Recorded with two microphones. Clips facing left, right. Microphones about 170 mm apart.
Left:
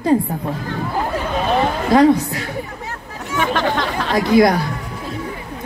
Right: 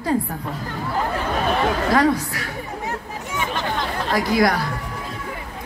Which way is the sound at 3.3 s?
85° left.